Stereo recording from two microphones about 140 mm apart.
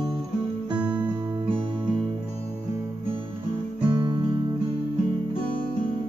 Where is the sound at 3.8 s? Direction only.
40° right (ahead or behind).